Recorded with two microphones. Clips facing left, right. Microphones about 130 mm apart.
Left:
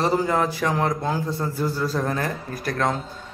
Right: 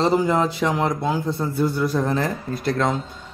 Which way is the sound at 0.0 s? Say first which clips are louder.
Right 2 dB; 20° right (ahead or behind).